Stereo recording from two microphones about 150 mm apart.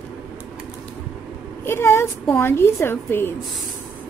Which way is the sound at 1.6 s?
15° left (ahead or behind).